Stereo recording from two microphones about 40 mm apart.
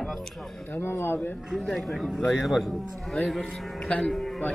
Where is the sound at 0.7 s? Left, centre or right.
Left.